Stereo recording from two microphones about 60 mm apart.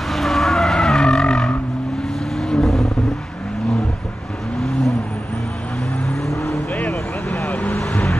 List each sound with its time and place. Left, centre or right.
0.1 s vehicle: centre
4.6 s vehicle: centre
6.0 s vehicle: centre
7.4 s vehicle: left